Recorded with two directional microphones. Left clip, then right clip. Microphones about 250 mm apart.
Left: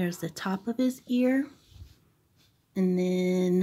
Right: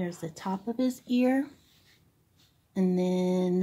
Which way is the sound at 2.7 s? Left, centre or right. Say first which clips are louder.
Left 1 dB; centre.